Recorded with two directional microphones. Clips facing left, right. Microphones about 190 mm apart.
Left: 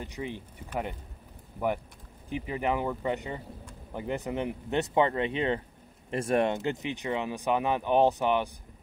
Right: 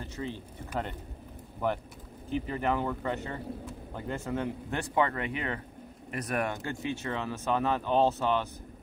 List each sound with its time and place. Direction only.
0.0 s speech: 15° left (ahead or behind)
1.6 s speech: 10° left (ahead or behind)